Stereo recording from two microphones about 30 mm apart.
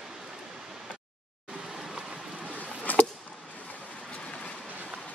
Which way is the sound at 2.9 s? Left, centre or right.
Left.